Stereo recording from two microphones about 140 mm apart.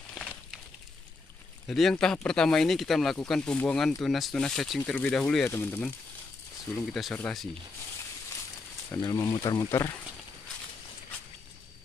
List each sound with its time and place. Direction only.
1.7 s speech: centre (ahead or behind)
6.8 s speech: centre (ahead or behind)
8.9 s speech: 30° left (ahead or behind)
9.7 s speech: 20° left (ahead or behind)